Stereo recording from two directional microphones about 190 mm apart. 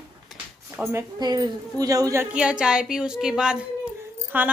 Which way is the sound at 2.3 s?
5° right (ahead or behind).